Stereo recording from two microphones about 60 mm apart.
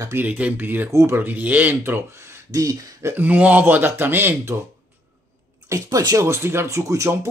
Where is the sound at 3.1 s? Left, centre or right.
Right.